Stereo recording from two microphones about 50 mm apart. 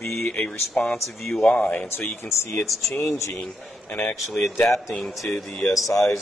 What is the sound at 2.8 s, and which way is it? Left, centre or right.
Speech, left.